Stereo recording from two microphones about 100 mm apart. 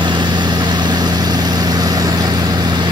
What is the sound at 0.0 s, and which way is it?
Vehicle, 50° right (ahead or behind).